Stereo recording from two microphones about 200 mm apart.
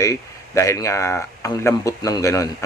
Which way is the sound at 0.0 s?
15° left (ahead or behind).